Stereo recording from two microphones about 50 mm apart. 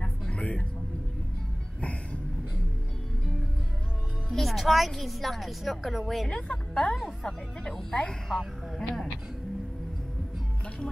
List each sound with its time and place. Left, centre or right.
0.0 s a sound: left
4.3 s a woman's voice: centre
6.2 s speech: centre